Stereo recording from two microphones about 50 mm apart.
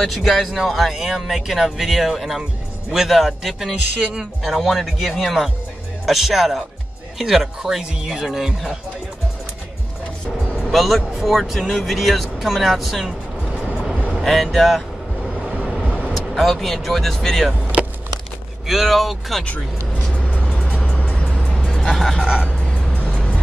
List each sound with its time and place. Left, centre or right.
0.0 s speech: centre
4.0 s speech: centre
4.4 s speech: centre
10.5 s speech: centre
14.2 s speech: centre
16.1 s speech: centre
18.7 s speech: centre
19.4 s speech: left
20.1 s music: left; by 21.8 s centre
21.9 s speech: centre
22.2 s speech: centre
22.5 s music: left